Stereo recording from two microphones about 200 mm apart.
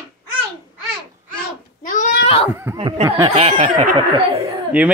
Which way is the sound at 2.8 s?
30° right (ahead or behind).